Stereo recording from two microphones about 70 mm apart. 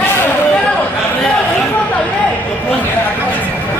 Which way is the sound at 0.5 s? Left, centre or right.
Centre.